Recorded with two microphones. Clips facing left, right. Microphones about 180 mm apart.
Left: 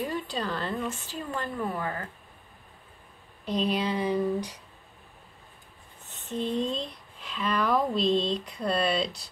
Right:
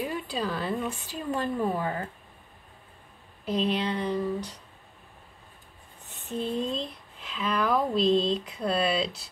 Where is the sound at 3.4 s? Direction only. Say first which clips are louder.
Even; centre (ahead or behind).